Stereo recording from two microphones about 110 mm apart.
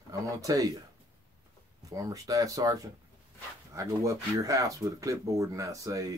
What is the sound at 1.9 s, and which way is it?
Speech, 30° right (ahead or behind).